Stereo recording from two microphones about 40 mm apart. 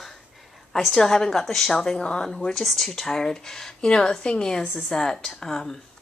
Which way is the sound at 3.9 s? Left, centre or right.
Left.